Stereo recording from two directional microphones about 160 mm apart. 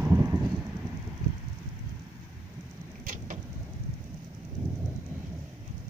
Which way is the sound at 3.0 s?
55° right (ahead or behind).